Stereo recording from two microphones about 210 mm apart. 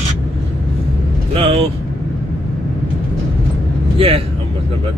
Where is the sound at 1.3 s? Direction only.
25° right (ahead or behind).